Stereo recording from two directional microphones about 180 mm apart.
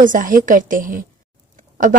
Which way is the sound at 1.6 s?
45° right (ahead or behind).